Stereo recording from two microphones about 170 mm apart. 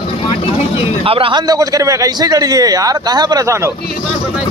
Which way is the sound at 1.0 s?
30° right (ahead or behind).